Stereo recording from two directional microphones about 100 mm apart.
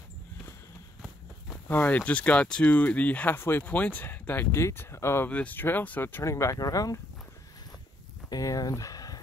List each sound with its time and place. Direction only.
1.7 s speech: 20° left (ahead or behind)
5.3 s speech: 15° left (ahead or behind)
6.3 s speech: 30° left (ahead or behind)
8.3 s speech: 35° left (ahead or behind)